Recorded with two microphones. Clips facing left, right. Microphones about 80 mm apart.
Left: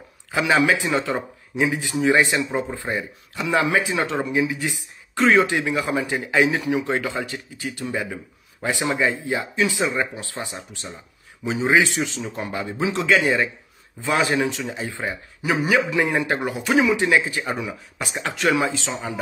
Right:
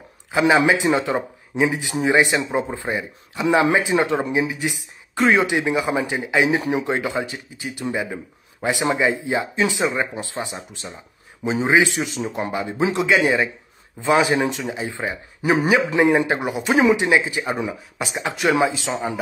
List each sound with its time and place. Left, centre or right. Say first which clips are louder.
0.3 s speech: right 3 dB; centre